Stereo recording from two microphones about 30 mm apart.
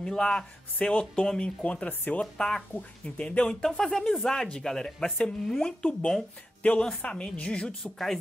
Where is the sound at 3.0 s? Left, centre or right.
Left.